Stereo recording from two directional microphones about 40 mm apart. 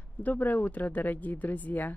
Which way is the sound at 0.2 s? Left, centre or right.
Left.